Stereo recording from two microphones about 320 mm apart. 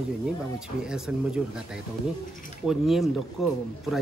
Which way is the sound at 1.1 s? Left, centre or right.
Centre.